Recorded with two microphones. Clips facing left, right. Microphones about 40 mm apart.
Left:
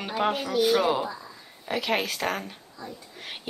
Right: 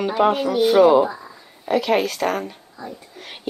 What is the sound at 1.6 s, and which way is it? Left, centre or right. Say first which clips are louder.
Speech: right 8 dB; centre.